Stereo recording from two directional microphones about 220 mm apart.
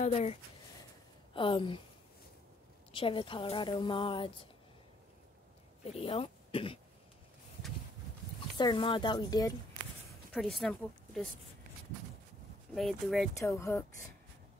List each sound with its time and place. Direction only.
0.0 s a woman's voice: 30° left (ahead or behind)
2.9 s a woman's voice: 25° left (ahead or behind)
5.9 s speech: 25° left (ahead or behind)
8.5 s a woman's voice: 20° left (ahead or behind)
10.3 s speech: centre (ahead or behind)
12.7 s speech: centre (ahead or behind)
13.4 s speech: 15° left (ahead or behind)